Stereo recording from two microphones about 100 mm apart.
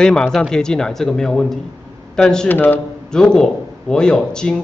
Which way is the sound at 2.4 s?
20° left (ahead or behind).